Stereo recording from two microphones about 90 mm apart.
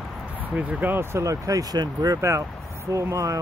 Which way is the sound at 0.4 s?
15° right (ahead or behind).